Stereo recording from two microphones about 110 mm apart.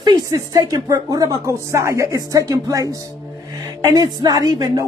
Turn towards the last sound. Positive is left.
turn(degrees=-35)  # may be behind; listen again after turning